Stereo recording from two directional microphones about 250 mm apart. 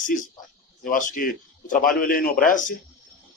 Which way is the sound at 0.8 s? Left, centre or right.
Left.